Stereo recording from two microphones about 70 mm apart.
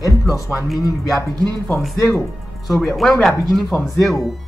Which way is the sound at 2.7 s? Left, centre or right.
Centre.